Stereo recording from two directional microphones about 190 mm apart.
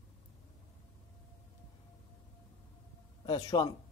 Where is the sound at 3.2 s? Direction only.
25° left (ahead or behind).